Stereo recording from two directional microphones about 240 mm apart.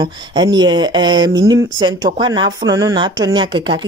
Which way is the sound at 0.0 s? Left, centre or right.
Centre.